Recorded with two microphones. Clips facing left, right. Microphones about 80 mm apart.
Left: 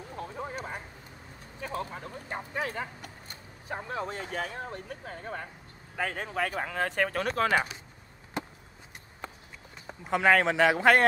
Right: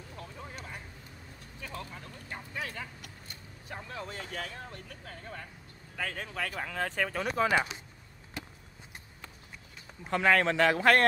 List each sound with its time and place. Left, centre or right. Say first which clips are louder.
0.3 s a sound: left 9 dB; left
1.6 s speech: left 7 dB; left
6.7 s speech: left 3 dB; centre
10.0 s speech: left 2 dB; centre